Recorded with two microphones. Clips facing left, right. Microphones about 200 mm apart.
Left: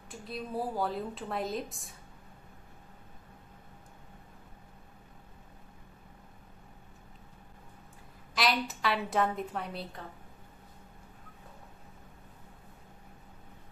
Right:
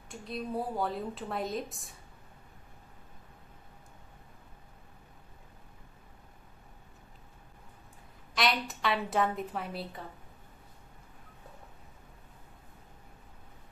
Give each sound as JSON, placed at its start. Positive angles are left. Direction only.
{"t": 0.1, "sound": "a woman's voice", "side_deg": 0}
{"t": 8.4, "sound": "a woman's voice", "side_deg": 0}